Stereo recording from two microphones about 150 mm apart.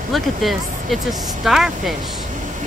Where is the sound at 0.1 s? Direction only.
Centre (ahead or behind).